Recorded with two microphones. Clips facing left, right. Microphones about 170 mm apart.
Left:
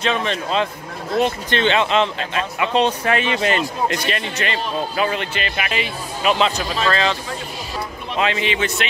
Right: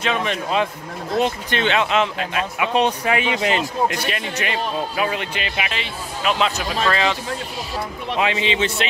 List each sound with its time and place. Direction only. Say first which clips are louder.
0.0 s speech: left 1 dB; 10° right (ahead or behind)
5.7 s speech: left 4 dB; 5° left (ahead or behind)
8.2 s a man's voice: even; 15° right (ahead or behind)